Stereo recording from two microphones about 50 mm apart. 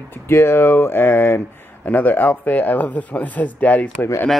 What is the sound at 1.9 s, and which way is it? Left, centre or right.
Speech, left.